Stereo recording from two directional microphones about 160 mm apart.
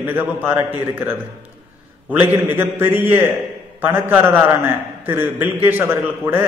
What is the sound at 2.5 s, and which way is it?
A man's voice, 15° right (ahead or behind).